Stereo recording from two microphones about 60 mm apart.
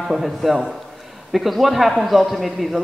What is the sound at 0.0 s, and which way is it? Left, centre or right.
A man's voice, centre.